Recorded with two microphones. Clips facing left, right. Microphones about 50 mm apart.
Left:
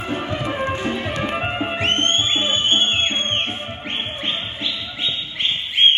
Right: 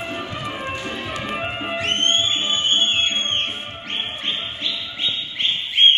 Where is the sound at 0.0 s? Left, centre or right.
Left.